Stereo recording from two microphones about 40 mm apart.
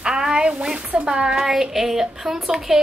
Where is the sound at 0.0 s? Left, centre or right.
Centre.